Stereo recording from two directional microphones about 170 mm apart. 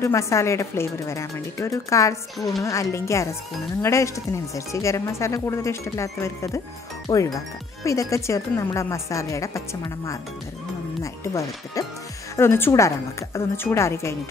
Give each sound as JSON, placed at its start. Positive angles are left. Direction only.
{"t": 0.0, "sound": "a woman's voice", "side_deg": 15}